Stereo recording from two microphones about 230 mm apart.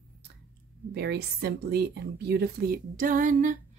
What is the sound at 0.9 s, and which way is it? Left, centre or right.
A woman's voice, right.